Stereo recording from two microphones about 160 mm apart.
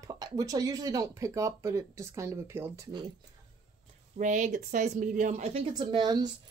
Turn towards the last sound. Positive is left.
turn(degrees=-25)  # may be behind; listen again after turning